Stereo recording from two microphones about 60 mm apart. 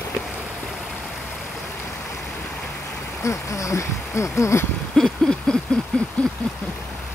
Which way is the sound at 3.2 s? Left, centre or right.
Left.